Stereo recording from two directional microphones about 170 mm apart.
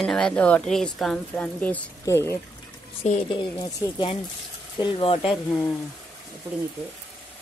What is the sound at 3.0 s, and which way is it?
Speech, 35° left (ahead or behind).